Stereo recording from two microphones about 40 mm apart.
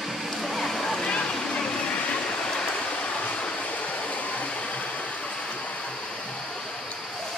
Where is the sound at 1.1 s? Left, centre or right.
Left.